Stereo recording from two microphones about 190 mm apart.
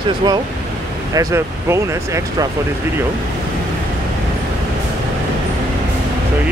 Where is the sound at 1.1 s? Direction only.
15° right (ahead or behind).